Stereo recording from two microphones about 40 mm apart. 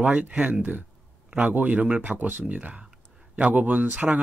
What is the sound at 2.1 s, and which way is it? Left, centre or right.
Speech, right.